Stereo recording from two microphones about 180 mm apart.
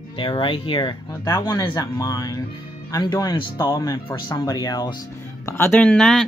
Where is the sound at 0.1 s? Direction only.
25° left (ahead or behind).